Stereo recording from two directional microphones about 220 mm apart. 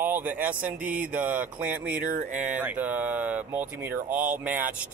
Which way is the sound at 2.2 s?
35° right (ahead or behind).